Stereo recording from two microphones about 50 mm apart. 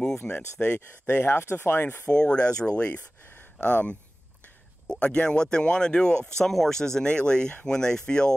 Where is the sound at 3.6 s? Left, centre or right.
Left.